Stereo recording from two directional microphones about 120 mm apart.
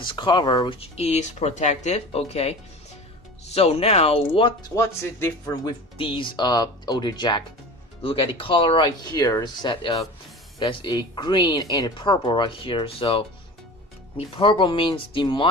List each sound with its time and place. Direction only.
0.0 s speech: 40° left (ahead or behind)
0.7 s speech: 60° left (ahead or behind)
4.6 s speech: 25° left (ahead or behind)
5.9 s speech: 45° left (ahead or behind)